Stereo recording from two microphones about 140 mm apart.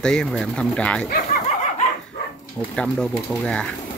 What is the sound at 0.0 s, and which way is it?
Speech, 5° left (ahead or behind).